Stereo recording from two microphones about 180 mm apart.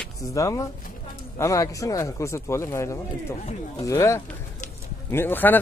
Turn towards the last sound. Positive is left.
turn(degrees=10)  # may be behind; listen again after turning